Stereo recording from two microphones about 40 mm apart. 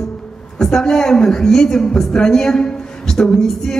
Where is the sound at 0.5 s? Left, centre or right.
Centre.